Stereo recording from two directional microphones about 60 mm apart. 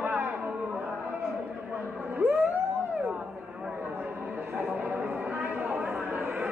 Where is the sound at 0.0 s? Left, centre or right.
Right.